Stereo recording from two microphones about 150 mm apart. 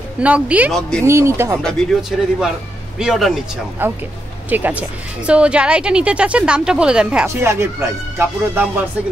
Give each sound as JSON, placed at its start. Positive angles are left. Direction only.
{"t": 0.2, "sound": "a woman's voice", "side_deg": -10}
{"t": 0.7, "sound": "speech", "side_deg": 5}
{"t": 1.0, "sound": "a woman's voice", "side_deg": -20}
{"t": 1.6, "sound": "speech", "side_deg": 0}
{"t": 3.8, "sound": "a woman's voice", "side_deg": -15}
{"t": 7.2, "sound": "a woman's voice", "side_deg": -15}